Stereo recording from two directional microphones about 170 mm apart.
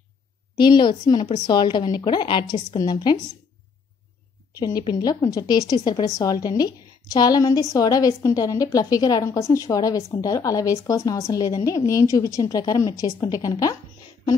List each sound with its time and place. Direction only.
0.6 s a woman's voice: 25° left (ahead or behind)
4.6 s a woman's voice: 25° left (ahead or behind)